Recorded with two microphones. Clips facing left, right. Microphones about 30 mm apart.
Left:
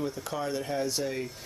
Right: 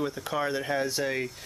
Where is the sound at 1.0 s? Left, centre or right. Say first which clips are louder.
Right 3 dB; right.